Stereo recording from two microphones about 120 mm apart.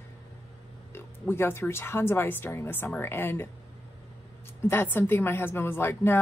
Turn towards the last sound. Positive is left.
turn(degrees=20)  # may be behind; listen again after turning